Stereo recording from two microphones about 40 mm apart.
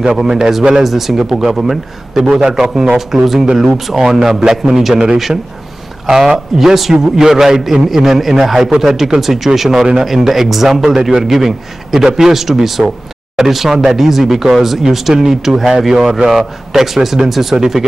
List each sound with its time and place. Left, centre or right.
0.1 s a man's voice: centre